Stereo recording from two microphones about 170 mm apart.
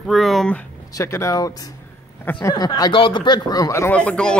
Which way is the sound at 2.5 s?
25° left (ahead or behind).